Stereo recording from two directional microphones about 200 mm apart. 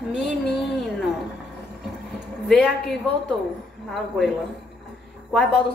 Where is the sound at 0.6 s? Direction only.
Centre (ahead or behind).